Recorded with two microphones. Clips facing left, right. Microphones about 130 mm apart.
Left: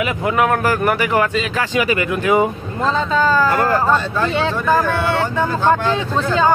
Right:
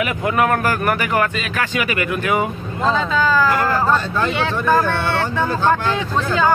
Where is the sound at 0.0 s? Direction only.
20° left (ahead or behind).